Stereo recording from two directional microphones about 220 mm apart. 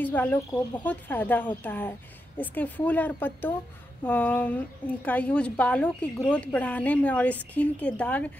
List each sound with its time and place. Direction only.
0.0 s a woman's voice: 10° left (ahead or behind)